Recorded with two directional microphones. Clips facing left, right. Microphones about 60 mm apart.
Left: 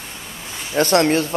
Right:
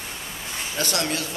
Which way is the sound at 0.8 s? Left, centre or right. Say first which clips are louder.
Left 12 dB; left.